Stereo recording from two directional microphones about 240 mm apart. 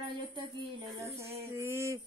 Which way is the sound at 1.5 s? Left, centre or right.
Centre.